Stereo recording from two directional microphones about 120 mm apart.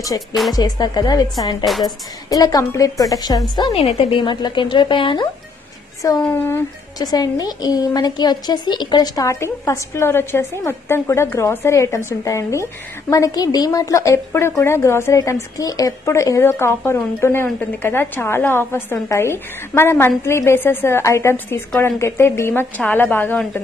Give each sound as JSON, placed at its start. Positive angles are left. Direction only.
{"t": 0.5, "sound": "a woman's voice", "side_deg": 35}
{"t": 3.7, "sound": "a woman's voice", "side_deg": 55}
{"t": 6.2, "sound": "speech", "side_deg": 15}
{"t": 7.0, "sound": "a woman's voice", "side_deg": 30}